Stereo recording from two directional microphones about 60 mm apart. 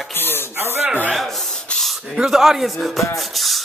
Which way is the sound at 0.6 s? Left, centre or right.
Right.